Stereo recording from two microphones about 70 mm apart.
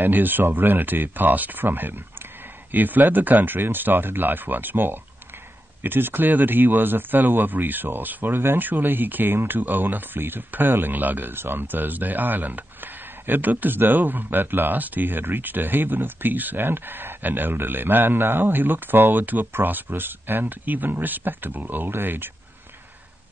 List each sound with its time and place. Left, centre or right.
0.0 s speech: right